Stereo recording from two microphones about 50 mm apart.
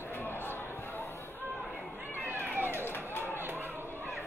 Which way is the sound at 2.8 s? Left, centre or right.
Left.